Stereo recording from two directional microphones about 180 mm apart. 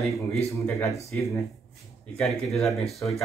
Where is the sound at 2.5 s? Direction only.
Centre (ahead or behind).